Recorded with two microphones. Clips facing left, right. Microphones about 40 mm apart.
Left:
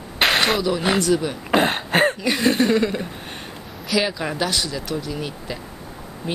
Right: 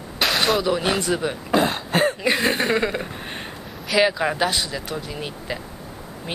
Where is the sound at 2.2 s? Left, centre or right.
Right.